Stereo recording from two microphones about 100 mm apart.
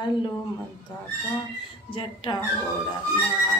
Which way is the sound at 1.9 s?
55° left (ahead or behind).